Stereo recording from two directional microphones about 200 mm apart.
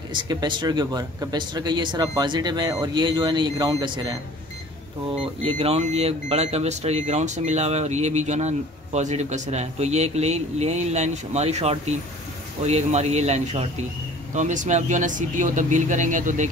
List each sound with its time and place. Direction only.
0.1 s speech: 20° right (ahead or behind)
5.2 s speech: 30° right (ahead or behind)